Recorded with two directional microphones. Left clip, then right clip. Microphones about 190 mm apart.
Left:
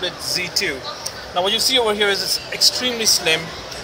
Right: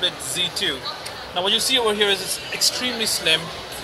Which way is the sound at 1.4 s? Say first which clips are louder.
Left 2 dB; 20° left (ahead or behind).